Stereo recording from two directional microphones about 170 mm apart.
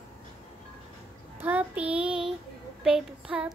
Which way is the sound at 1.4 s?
10° right (ahead or behind).